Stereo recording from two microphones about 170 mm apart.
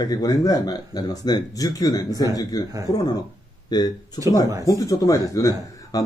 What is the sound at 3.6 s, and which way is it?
Speech, 25° left (ahead or behind).